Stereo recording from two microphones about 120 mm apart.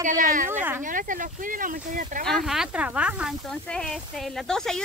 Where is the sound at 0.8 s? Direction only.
90° right.